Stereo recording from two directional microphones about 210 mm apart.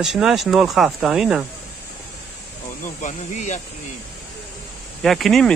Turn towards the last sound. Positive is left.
turn(degrees=0)  # may be behind; listen again after turning